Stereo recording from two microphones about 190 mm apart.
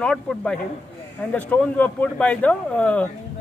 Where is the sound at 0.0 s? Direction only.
5° left (ahead or behind).